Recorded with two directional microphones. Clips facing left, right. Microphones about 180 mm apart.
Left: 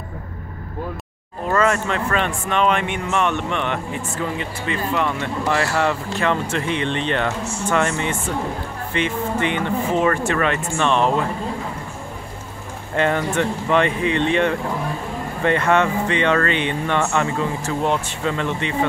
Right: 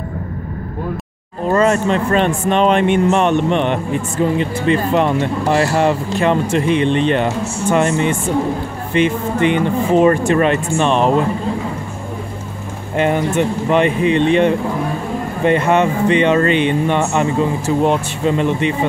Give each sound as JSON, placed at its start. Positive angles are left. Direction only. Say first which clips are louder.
{"t": 1.5, "sound": "speech", "louder": "right 5 dB", "side_deg": -25}
{"t": 8.9, "sound": "speech", "louder": "right 6 dB", "side_deg": 20}
{"t": 10.2, "sound": "speech", "louder": "right 6 dB", "side_deg": -20}
{"t": 12.9, "sound": "speech", "louder": "right 4 dB", "side_deg": -15}